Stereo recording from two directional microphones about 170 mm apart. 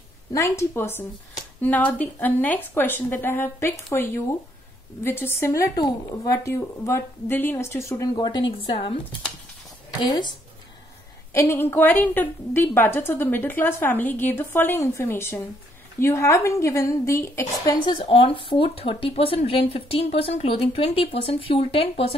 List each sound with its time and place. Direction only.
0.3 s a woman's voice: 15° left (ahead or behind)
9.9 s speech: 25° left (ahead or behind)
11.3 s a woman's voice: 15° left (ahead or behind)
17.9 s speech: 30° left (ahead or behind)